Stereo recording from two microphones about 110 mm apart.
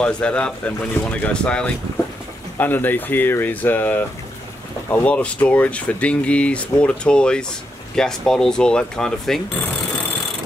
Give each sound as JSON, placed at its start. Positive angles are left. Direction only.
{"t": 0.0, "sound": "speech", "side_deg": 10}
{"t": 5.0, "sound": "speech", "side_deg": 15}